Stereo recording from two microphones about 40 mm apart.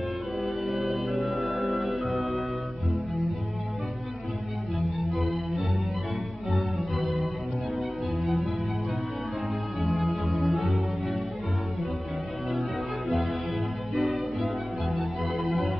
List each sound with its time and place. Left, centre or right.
0.7 s music: centre
4.7 s organ: centre
6.5 s music: centre
9.8 s music: centre
13.9 s music: centre